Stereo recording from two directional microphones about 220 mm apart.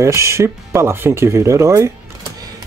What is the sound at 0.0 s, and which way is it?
Speech, 15° right (ahead or behind).